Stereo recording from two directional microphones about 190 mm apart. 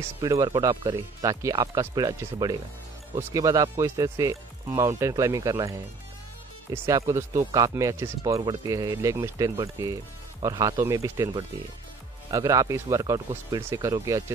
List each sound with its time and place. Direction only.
0.2 s speech: 20° right (ahead or behind)